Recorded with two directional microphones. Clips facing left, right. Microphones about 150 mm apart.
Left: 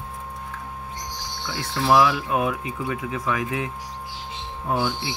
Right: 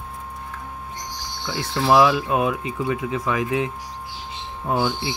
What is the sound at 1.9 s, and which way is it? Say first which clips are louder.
Speech: right 2 dB; 20° right (ahead or behind).